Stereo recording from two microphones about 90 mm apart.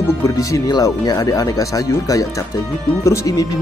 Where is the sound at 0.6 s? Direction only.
45° left (ahead or behind).